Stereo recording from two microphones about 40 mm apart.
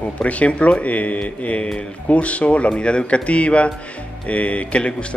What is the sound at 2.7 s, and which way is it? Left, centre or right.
Speech, left.